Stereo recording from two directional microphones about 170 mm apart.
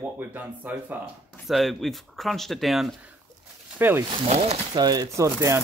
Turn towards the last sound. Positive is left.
turn(degrees=-15)  # may be behind; listen again after turning